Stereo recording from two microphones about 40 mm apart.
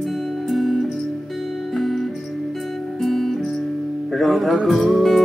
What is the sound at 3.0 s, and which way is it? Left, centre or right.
Music, centre.